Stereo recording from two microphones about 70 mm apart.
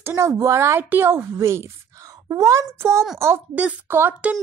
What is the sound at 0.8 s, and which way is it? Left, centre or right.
Speech, right.